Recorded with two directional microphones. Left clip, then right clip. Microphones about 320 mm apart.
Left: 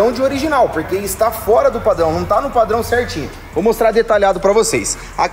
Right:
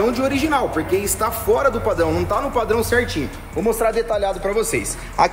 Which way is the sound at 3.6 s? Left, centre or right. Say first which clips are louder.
Left 6 dB; left.